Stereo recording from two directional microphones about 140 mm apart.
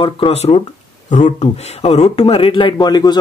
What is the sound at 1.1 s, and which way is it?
Speech, 60° left (ahead or behind).